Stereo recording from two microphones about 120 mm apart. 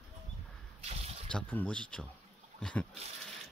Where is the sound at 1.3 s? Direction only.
10° left (ahead or behind).